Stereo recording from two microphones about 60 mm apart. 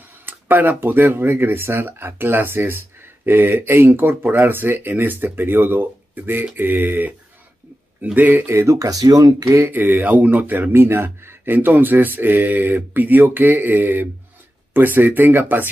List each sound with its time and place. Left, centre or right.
0.2 s speech: right
8.5 s speech: right
9.7 s speech: right
10.7 s speech: right